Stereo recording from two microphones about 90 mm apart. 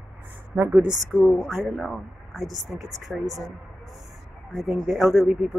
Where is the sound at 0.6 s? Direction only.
15° right (ahead or behind).